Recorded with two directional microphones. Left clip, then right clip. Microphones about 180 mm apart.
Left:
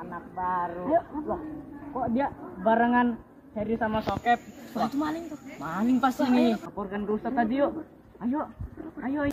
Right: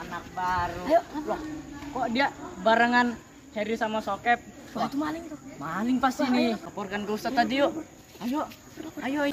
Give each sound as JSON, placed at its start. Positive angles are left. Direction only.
{"t": 0.1, "sound": "speech", "side_deg": -35}
{"t": 4.2, "sound": "a man's voice", "side_deg": 0}
{"t": 6.8, "sound": "speech", "side_deg": -40}
{"t": 9.0, "sound": "speech", "side_deg": -45}